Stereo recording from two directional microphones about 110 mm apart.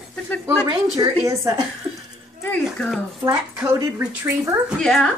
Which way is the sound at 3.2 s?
25° right (ahead or behind).